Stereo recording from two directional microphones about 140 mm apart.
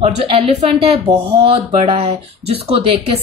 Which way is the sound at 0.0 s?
45° right (ahead or behind).